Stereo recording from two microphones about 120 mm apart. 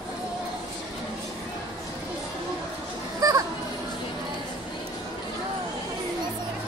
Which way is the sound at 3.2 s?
30° right (ahead or behind).